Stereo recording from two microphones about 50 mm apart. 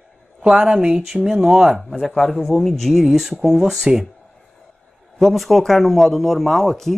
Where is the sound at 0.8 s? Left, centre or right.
Centre.